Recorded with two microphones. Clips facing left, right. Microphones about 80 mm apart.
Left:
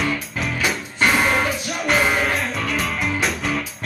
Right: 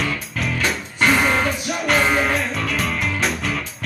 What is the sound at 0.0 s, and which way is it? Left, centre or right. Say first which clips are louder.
Music: left 1 dB; centre.